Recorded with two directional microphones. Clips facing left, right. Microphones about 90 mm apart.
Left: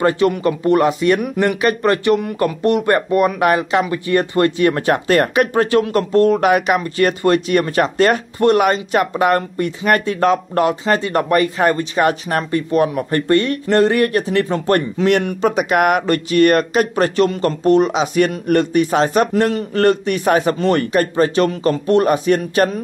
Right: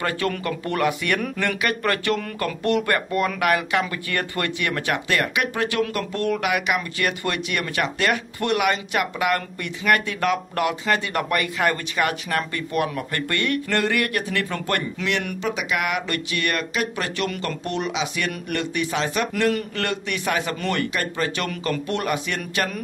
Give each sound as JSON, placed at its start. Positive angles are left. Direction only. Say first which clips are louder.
{"t": 0.0, "sound": "speech", "louder": "left 10 dB", "side_deg": 25}
{"t": 1.2, "sound": "speech", "louder": "left 8 dB", "side_deg": 15}
{"t": 15.2, "sound": "speech", "louder": "left 9 dB", "side_deg": 45}